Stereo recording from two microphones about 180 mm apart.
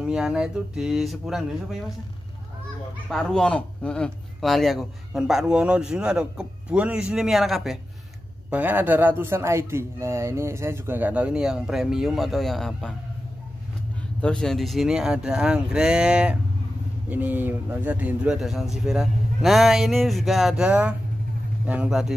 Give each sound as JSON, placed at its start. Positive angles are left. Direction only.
{"t": 0.0, "sound": "a man's voice", "side_deg": -5}
{"t": 3.1, "sound": "a man's voice", "side_deg": 0}
{"t": 14.2, "sound": "a man's voice", "side_deg": 5}